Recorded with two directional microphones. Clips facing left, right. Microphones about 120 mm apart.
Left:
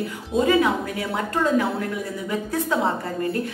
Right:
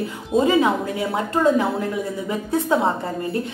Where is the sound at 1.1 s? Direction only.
25° right (ahead or behind).